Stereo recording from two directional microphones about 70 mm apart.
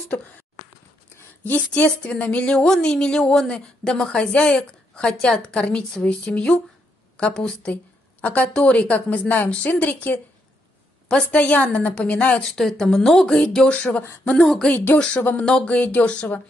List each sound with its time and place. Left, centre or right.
1.4 s a woman's voice: left
12.4 s a woman's voice: centre
15.1 s a woman's voice: left
15.4 s a woman's voice: centre